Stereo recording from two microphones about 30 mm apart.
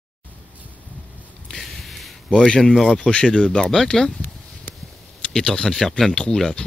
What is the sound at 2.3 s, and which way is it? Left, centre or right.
Speech, left.